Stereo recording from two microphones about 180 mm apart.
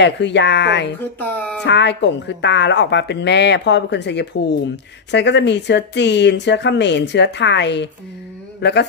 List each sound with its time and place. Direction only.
0.0 s speech: 75° left (ahead or behind)
1.2 s speech: 10° left (ahead or behind)
1.6 s speech: 75° left (ahead or behind)
8.5 s a sound: 70° left (ahead or behind)